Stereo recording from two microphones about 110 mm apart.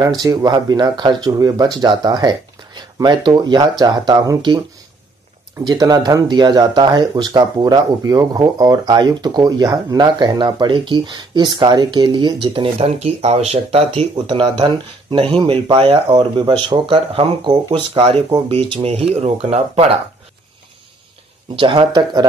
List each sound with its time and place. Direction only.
0.0 s speech: 35° right (ahead or behind)
5.6 s speech: 40° right (ahead or behind)
12.8 s speech: 80° right
14.1 s speech: 50° right (ahead or behind)
17.9 s speech: 55° right (ahead or behind)
21.5 s speech: 50° right (ahead or behind)